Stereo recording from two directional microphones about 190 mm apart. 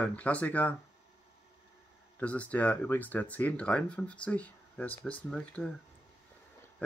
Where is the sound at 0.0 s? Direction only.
5° left (ahead or behind).